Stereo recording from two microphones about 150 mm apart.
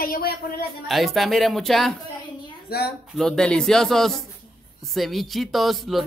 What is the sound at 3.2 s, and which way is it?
Speech, 5° left (ahead or behind).